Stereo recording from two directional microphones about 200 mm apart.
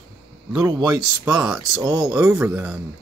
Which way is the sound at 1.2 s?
5° right (ahead or behind).